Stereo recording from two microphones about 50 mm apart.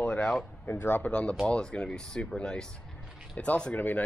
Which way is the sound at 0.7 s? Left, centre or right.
Left.